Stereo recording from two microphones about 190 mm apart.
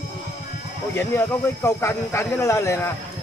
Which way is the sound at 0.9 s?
15° left (ahead or behind).